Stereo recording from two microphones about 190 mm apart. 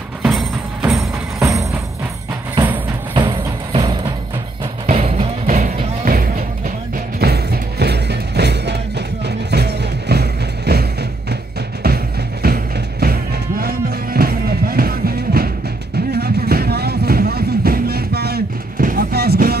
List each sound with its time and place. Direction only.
0.2 s music: centre (ahead or behind)
1.4 s music: 15° right (ahead or behind)
3.7 s music: 20° right (ahead or behind)
4.8 s music: 30° right (ahead or behind); by 19.5 s 55° right (ahead or behind)